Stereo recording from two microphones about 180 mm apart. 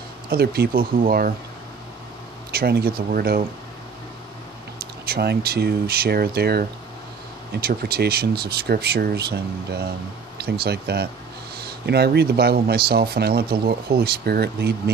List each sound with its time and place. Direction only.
0.3 s speech: 60° right (ahead or behind)
2.5 s speech: 60° right (ahead or behind)
5.0 s speech: 60° right (ahead or behind)